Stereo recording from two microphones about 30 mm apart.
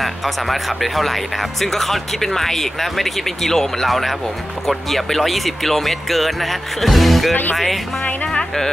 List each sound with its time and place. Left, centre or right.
0.0 s speech: centre
8.3 s music: left